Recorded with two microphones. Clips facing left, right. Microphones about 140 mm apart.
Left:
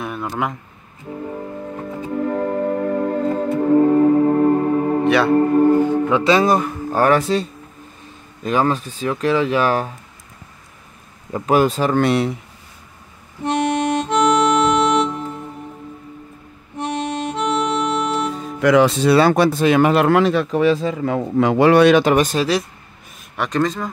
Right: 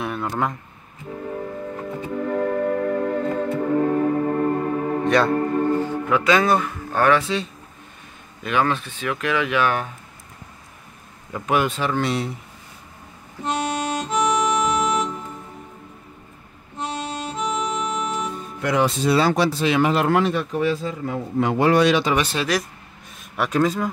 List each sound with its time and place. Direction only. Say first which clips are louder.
0.0 s a sound: left 1 dB; centre (ahead or behind)
2.2 s music: left 1 dB; 25° left (ahead or behind)
5.0 s music: even; 5° left (ahead or behind)
5.3 s speech: left 7 dB; 25° left (ahead or behind)
11.3 s speech: left 6 dB; 35° left (ahead or behind)
12.0 s speech: left 8 dB; 65° left (ahead or behind)
13.5 s music: left 6 dB; 60° left (ahead or behind)
16.7 s music: left 5 dB; 60° left (ahead or behind); by 22.5 s 45° left (ahead or behind)
23.3 s speech: even; 5° right (ahead or behind)